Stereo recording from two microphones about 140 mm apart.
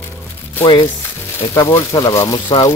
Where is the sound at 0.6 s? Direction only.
40° left (ahead or behind).